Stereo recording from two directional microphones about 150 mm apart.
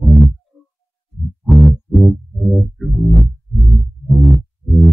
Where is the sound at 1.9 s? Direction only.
Centre (ahead or behind).